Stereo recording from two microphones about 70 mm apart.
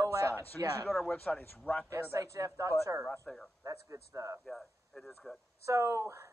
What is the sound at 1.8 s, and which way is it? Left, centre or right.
Speech, right.